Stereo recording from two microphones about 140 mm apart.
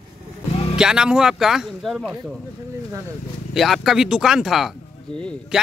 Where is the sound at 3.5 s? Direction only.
Centre (ahead or behind).